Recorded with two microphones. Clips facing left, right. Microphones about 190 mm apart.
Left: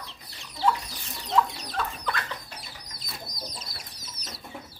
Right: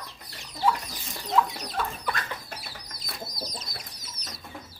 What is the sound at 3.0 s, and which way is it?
Chicken, 60° right (ahead or behind).